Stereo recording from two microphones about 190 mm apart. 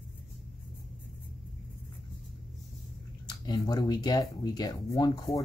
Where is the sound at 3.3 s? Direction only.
20° left (ahead or behind).